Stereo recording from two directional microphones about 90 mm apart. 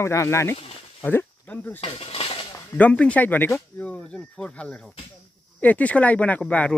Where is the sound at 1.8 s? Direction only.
90° left.